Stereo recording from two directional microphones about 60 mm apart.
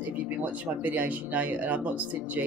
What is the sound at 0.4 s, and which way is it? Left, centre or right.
Speech, right.